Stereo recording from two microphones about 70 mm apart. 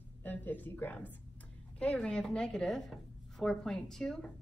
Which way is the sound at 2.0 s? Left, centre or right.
Centre.